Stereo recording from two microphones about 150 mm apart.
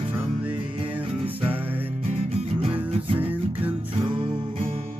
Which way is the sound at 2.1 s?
45° right (ahead or behind).